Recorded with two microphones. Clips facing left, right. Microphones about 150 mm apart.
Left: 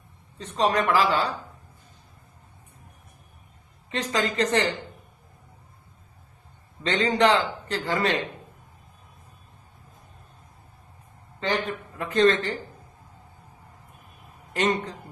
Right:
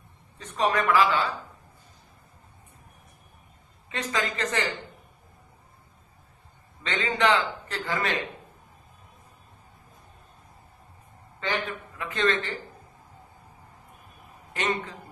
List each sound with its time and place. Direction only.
0.5 s speech: 35° left (ahead or behind)
3.9 s speech: 35° left (ahead or behind)
7.0 s speech: 35° left (ahead or behind)
11.4 s speech: 40° left (ahead or behind)
14.5 s speech: 35° left (ahead or behind)